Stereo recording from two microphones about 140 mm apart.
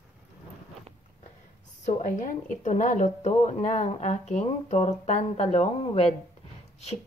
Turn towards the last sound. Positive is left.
turn(degrees=50)  # may be behind; listen again after turning